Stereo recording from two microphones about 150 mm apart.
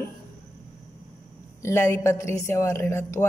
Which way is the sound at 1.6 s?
20° left (ahead or behind).